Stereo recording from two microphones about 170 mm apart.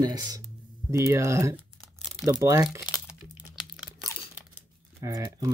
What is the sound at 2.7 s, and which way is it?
Crumpling, 5° right (ahead or behind).